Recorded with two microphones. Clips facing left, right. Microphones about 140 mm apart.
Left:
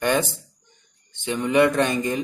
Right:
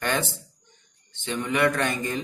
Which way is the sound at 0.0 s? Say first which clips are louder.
Left 5 dB; 15° left (ahead or behind).